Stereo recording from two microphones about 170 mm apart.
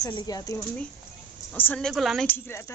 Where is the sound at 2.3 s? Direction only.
15° left (ahead or behind).